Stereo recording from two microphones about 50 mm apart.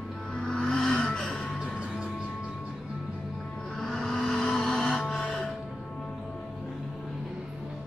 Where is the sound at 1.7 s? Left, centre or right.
Centre.